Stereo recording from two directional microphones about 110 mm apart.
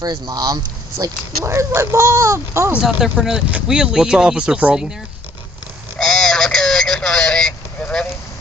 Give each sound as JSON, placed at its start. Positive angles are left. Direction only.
{"t": 0.0, "sound": "speech", "side_deg": -35}
{"t": 2.7, "sound": "speech", "side_deg": -5}
{"t": 5.9, "sound": "vehicle", "side_deg": 5}